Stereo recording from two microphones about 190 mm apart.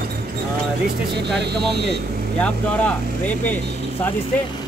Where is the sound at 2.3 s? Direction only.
5° left (ahead or behind).